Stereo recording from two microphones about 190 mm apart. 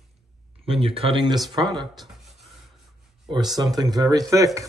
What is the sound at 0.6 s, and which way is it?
Speech, 30° right (ahead or behind).